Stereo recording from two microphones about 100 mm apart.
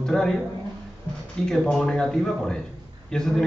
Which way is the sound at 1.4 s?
5° left (ahead or behind).